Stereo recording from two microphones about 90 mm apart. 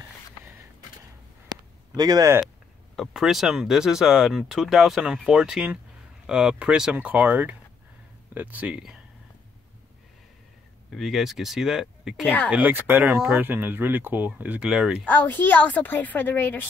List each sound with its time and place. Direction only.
2.0 s speech: 45° right (ahead or behind)
3.0 s speech: 5° right (ahead or behind)
10.9 s speech: centre (ahead or behind)
12.4 s speech: 15° right (ahead or behind)
14.7 s speech: 10° right (ahead or behind)
15.0 s a woman's voice: 20° left (ahead or behind)